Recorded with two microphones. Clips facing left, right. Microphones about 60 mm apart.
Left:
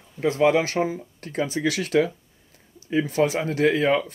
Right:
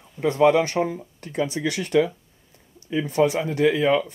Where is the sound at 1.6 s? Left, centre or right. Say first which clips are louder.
Even; centre.